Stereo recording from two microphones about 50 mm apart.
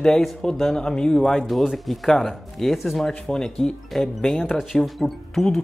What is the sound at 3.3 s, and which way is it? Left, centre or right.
Speech, centre.